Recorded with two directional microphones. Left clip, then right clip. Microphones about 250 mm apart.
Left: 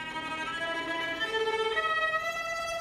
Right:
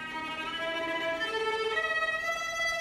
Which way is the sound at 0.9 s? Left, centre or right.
Centre.